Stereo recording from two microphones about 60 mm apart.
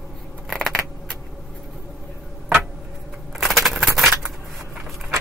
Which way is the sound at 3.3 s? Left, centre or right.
Centre.